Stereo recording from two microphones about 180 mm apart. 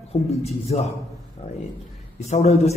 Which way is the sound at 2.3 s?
35° left (ahead or behind).